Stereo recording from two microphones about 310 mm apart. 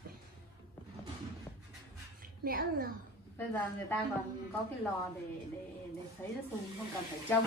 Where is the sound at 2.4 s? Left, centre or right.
Right.